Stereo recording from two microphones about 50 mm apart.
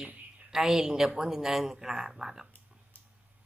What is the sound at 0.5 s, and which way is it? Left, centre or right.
Speech, centre.